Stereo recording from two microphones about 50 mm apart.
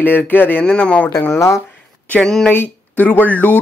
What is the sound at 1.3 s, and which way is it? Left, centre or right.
Speech, left.